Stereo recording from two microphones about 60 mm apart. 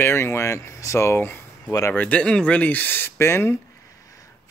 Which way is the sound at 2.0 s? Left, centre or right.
Left.